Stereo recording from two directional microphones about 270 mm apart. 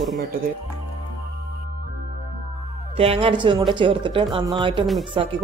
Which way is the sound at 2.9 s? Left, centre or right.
Right.